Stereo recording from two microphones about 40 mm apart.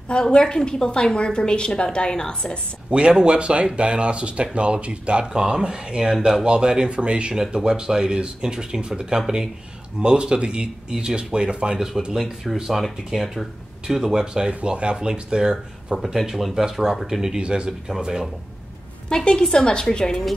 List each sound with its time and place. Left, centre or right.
0.2 s a woman's voice: left
2.9 s speech: right
5.2 s speech: centre
12.7 s speech: centre
17.2 s speech: centre
17.6 s speech: centre
19.0 s a woman's voice: centre